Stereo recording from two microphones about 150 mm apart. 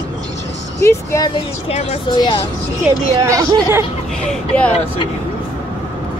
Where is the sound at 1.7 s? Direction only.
45° left (ahead or behind).